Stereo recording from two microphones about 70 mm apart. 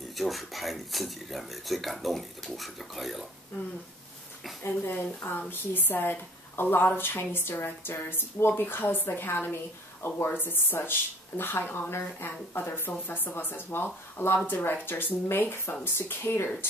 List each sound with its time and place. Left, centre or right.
0.1 s speech: centre
4.6 s speech: left